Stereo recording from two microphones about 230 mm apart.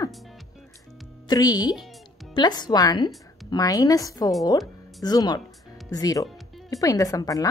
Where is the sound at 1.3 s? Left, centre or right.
Centre.